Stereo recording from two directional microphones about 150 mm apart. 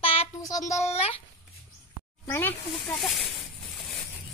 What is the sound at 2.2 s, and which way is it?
Speech, 20° left (ahead or behind).